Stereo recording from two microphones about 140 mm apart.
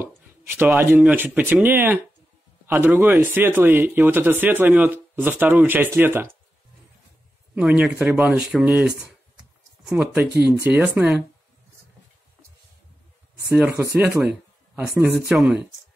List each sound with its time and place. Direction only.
0.5 s speech: 15° right (ahead or behind)
7.5 s speech: 5° right (ahead or behind)
13.6 s speech: 5° right (ahead or behind)
15.1 s speech: centre (ahead or behind)